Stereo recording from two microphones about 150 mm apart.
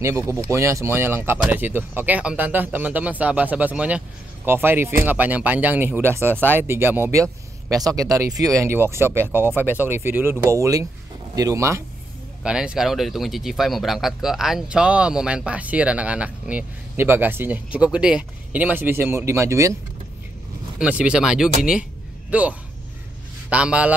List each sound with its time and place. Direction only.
0.0 s speech: 20° right (ahead or behind)
12.4 s speech: 5° right (ahead or behind)
20.8 s speech: 5° right (ahead or behind)